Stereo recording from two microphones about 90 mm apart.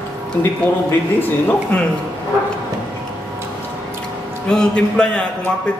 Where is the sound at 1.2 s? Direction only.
20° left (ahead or behind).